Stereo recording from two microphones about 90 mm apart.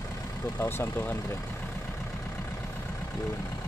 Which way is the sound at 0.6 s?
25° left (ahead or behind).